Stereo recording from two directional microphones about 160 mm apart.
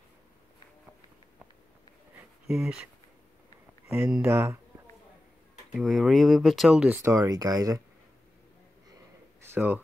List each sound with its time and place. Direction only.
2.4 s speech: centre (ahead or behind)
3.9 s speech: 10° right (ahead or behind)
5.7 s speech: centre (ahead or behind)
7.0 s speech: 20° right (ahead or behind)
9.4 s a sound: 15° right (ahead or behind)